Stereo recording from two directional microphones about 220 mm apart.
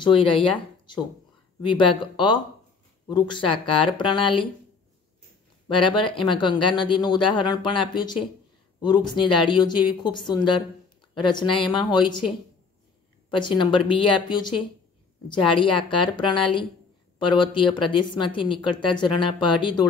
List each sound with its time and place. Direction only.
0.0 s speech: 25° left (ahead or behind)
5.7 s speech: 20° left (ahead or behind)
13.3 s speech: 20° left (ahead or behind)